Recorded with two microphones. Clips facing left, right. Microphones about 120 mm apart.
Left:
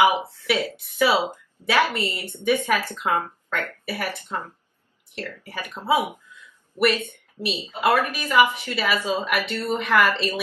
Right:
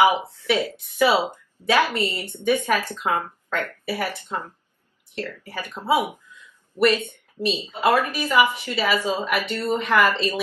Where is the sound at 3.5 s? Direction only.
15° right (ahead or behind).